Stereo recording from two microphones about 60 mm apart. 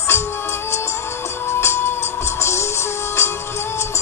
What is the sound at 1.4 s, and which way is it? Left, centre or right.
Music, left.